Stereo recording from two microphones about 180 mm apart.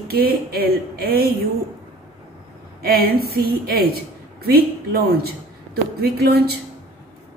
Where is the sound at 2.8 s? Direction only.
55° right (ahead or behind).